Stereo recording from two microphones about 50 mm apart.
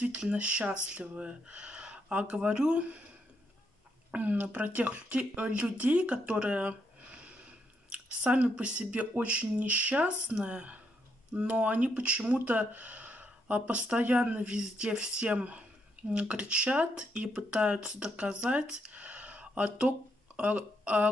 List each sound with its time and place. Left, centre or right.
0.0 s speech: right
4.1 s speech: right
10.0 s speech: right